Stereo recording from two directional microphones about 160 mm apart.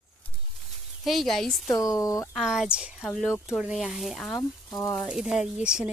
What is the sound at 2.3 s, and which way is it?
Speech, centre (ahead or behind).